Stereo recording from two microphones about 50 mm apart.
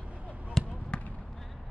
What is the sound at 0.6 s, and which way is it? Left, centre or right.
Basketball bounce, centre.